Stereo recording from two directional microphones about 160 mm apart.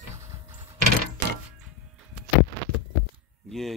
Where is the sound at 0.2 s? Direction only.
20° right (ahead or behind).